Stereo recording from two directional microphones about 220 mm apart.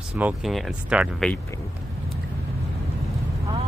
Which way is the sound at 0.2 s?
Centre (ahead or behind).